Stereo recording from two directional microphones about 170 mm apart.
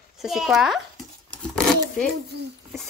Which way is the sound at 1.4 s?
5° left (ahead or behind).